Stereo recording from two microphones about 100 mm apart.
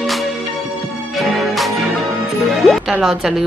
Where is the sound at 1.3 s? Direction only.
Centre (ahead or behind).